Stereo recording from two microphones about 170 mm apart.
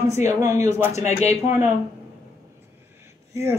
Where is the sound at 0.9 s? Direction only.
40° left (ahead or behind).